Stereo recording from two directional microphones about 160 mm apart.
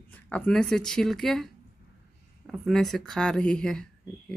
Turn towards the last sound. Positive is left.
turn(degrees=5)  # may be behind; listen again after turning